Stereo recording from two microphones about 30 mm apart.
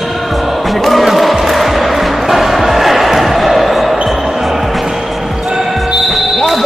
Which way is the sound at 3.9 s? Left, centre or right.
Centre.